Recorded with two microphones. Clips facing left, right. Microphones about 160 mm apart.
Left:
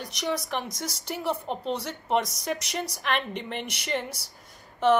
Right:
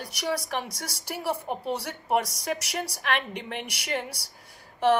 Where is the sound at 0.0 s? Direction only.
10° right (ahead or behind).